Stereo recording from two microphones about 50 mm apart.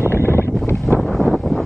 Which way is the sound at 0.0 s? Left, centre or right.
Left.